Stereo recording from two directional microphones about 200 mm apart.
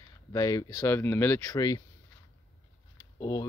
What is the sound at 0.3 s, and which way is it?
Speech, 15° left (ahead or behind).